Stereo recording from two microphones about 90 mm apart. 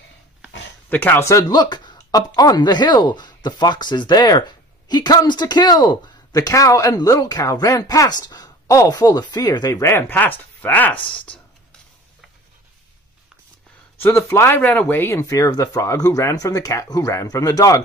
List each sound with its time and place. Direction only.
0.8 s speech: 20° left (ahead or behind)
1.5 s speech: 55° left (ahead or behind)
9.8 s speech: 25° left (ahead or behind)
14.0 s speech: 30° left (ahead or behind)